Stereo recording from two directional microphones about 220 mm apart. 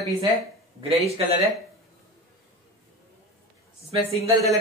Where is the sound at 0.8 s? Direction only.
25° right (ahead or behind).